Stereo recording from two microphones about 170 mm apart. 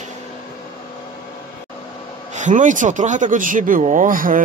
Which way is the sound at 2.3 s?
45° right (ahead or behind).